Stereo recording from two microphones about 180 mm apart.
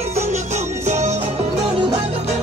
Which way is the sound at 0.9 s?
40° right (ahead or behind).